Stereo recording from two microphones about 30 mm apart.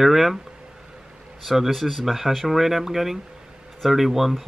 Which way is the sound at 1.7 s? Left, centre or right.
Centre.